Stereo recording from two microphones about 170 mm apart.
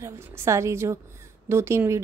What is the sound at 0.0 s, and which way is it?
Speech, 15° right (ahead or behind).